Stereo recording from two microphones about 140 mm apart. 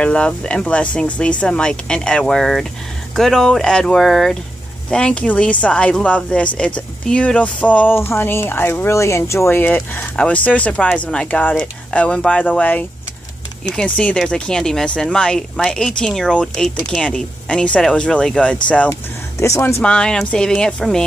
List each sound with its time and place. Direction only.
0.0 s speech: 10° left (ahead or behind)
19.4 s speech: 20° left (ahead or behind)
19.8 s speech: 5° left (ahead or behind)